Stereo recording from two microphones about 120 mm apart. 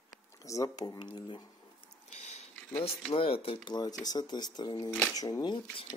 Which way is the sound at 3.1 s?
50° left (ahead or behind).